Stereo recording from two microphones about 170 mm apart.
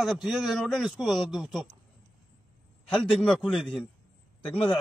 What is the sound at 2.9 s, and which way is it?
Speech, 5° left (ahead or behind).